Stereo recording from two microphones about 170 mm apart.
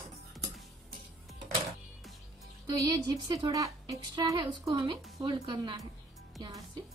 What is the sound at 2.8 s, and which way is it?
A woman's voice, 20° right (ahead or behind).